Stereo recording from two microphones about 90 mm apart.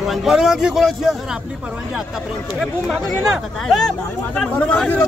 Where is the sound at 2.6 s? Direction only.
5° left (ahead or behind).